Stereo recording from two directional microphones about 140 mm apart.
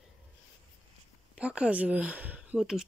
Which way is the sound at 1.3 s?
10° right (ahead or behind).